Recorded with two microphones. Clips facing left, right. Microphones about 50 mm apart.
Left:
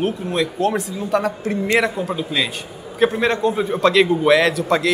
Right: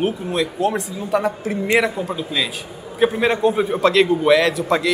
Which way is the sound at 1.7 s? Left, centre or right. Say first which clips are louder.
Right 1 dB; centre.